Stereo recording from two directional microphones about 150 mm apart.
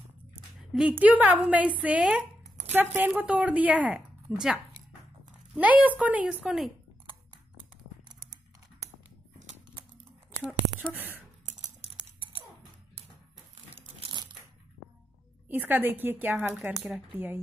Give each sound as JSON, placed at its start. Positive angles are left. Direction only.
{"t": 0.7, "sound": "a woman's voice", "side_deg": -10}
{"t": 10.9, "sound": "speech", "side_deg": -15}
{"t": 11.8, "sound": "a sound", "side_deg": -40}
{"t": 13.7, "sound": "crushing", "side_deg": -35}
{"t": 15.4, "sound": "a woman's voice", "side_deg": -15}